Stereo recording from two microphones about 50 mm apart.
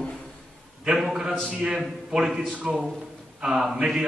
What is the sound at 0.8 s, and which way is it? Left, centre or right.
A man's voice, centre.